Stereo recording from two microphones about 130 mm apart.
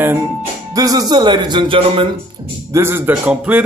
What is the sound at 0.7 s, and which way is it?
Speech, 30° right (ahead or behind).